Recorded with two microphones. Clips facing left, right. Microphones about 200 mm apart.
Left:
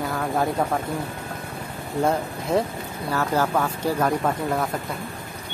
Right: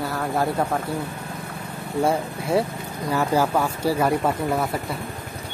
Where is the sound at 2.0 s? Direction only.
10° right (ahead or behind).